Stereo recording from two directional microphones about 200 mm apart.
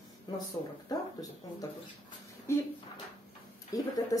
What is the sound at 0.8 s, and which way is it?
A woman's voice, 20° left (ahead or behind).